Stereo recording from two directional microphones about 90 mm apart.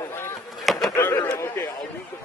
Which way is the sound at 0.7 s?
Centre (ahead or behind).